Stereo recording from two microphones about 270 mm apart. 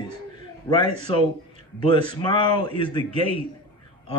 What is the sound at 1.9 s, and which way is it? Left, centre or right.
Speech, centre.